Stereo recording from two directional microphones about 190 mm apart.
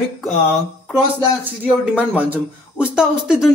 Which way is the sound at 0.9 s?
10° right (ahead or behind).